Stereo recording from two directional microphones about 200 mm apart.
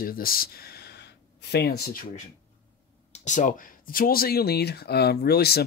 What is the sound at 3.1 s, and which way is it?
Speech, 40° left (ahead or behind).